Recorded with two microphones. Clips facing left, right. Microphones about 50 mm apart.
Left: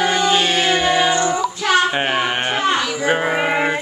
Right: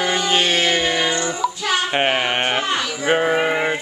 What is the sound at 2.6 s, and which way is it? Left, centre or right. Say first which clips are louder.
Sheep: left 4 dB; left.